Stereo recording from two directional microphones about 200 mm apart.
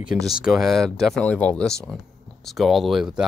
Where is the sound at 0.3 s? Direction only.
Centre (ahead or behind).